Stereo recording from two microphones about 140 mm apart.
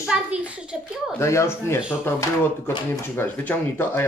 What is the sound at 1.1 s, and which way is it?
Speech, 20° left (ahead or behind).